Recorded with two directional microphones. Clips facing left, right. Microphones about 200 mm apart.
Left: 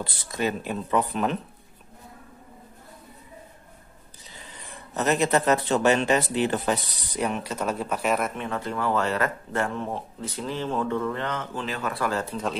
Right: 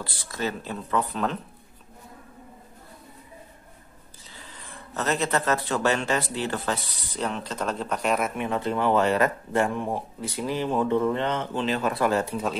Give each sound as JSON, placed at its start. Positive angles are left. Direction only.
{"t": 0.0, "sound": "speech", "side_deg": 20}
{"t": 4.9, "sound": "speech", "side_deg": 15}
{"t": 8.4, "sound": "speech", "side_deg": -20}